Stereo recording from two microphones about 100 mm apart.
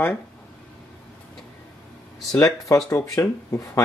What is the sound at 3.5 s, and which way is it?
Speech, 30° left (ahead or behind).